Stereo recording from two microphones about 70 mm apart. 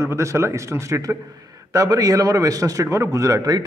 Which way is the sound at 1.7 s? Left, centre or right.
Right.